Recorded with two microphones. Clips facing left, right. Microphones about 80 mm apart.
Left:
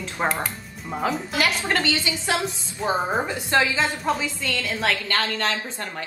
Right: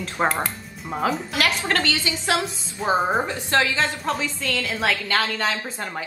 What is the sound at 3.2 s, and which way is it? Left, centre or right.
Speech, centre.